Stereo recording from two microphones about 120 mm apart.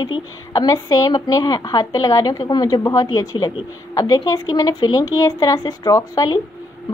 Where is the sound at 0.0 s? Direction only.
35° left (ahead or behind).